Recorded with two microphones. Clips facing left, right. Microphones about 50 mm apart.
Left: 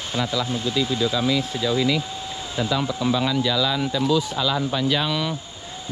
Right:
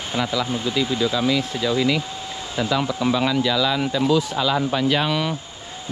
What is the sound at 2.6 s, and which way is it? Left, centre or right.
Speech, right.